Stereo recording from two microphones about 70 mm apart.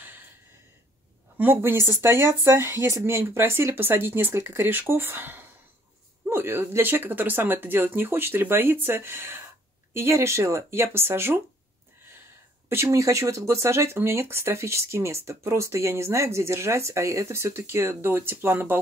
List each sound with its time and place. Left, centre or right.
1.4 s speech: right
12.6 s speech: right